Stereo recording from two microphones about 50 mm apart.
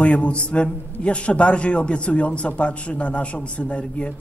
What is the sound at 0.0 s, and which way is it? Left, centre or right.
A man's voice, left.